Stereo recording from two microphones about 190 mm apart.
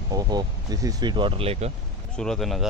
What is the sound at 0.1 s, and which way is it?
Speech, 20° right (ahead or behind).